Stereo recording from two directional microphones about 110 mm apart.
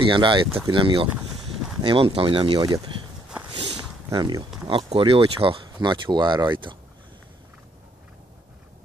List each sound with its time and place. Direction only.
0.0 s speech: 45° right (ahead or behind)
4.1 s speech: 35° right (ahead or behind)
4.6 s speech: 50° right (ahead or behind)